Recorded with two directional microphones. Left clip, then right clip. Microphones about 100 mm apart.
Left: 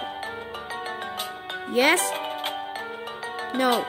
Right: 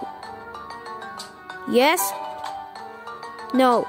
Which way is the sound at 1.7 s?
45° right (ahead or behind).